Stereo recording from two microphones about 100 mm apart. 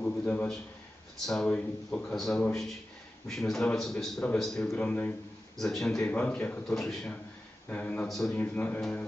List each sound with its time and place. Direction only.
0.0 s a sound: 15° left (ahead or behind)
1.2 s a man's voice: 5° left (ahead or behind)
4.7 s a man's voice: 15° left (ahead or behind)
7.7 s a man's voice: 15° left (ahead or behind)
8.1 s a man's voice: 5° left (ahead or behind)
8.4 s a man's voice: 15° left (ahead or behind)